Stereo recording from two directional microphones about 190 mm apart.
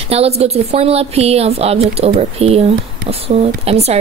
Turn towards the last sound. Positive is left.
turn(degrees=-35)  # may be behind; listen again after turning